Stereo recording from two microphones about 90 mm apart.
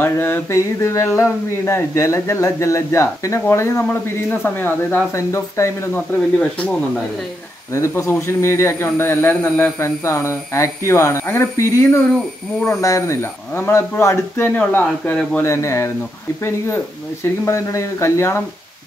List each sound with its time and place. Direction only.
0.0 s speech: 25° left (ahead or behind)
5.1 s speech: 30° left (ahead or behind)
6.6 s speech: 10° left (ahead or behind)
7.7 s speech: 30° left (ahead or behind); by 15.1 s 15° left (ahead or behind)
15.4 s speech: 30° left (ahead or behind)